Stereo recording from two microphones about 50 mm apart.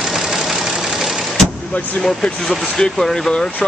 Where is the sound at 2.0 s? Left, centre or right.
Centre.